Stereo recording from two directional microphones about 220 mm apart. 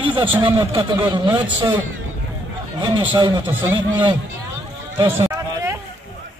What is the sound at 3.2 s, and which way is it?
Speech, 20° right (ahead or behind).